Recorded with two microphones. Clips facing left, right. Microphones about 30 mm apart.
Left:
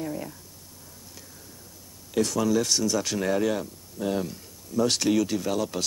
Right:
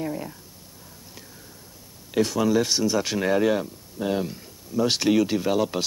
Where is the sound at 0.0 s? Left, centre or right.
Centre.